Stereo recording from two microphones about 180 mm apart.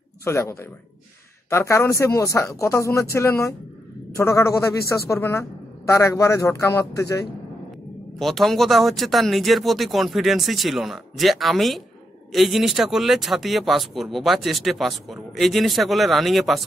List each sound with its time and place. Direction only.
0.2 s a woman's voice: 15° left (ahead or behind)
8.2 s speech: centre (ahead or behind)